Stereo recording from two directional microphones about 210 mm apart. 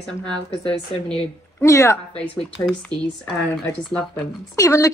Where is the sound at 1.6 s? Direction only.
15° left (ahead or behind).